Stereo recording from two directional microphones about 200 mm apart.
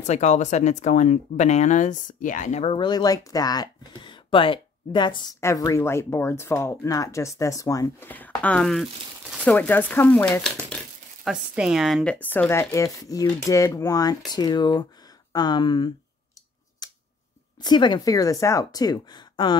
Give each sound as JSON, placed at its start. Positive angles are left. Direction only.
{"t": 0.0, "sound": "speech", "side_deg": 35}
{"t": 16.8, "sound": "scissors", "side_deg": 20}
{"t": 17.6, "sound": "speech", "side_deg": 20}